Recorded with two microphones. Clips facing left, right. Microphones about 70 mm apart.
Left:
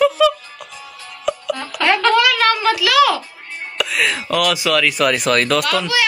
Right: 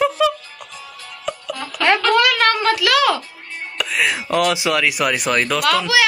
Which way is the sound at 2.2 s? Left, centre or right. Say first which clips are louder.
Left 1 dB; right.